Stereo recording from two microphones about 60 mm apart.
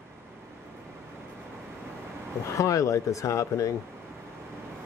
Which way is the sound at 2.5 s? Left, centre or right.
Left.